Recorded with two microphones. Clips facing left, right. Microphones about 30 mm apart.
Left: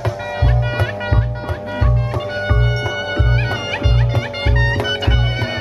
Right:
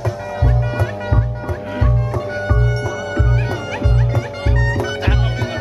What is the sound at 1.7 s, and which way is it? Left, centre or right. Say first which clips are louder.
Music: even; centre.